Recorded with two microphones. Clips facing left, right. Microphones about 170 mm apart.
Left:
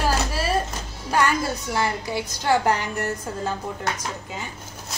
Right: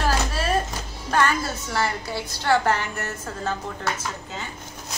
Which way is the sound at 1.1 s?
10° left (ahead or behind).